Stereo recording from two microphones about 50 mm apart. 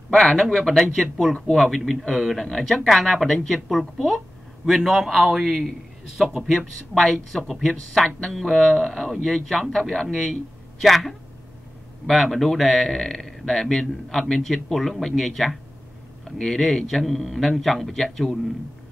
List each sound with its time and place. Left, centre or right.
0.1 s speech: centre
0.4 s a man's voice: centre
6.5 s a man's voice: centre
8.0 s a man's voice: centre